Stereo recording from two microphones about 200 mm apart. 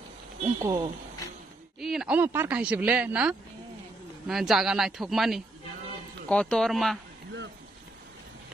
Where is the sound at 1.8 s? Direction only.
Centre (ahead or behind).